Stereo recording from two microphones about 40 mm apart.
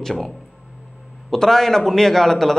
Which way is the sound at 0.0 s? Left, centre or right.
Centre.